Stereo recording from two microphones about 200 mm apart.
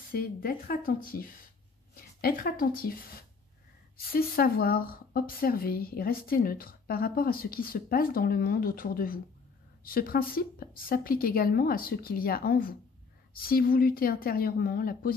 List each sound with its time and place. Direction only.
0.1 s speech: 45° left (ahead or behind)
2.2 s speech: 45° left (ahead or behind)